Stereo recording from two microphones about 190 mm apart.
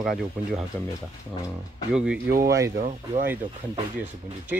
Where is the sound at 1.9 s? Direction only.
5° right (ahead or behind).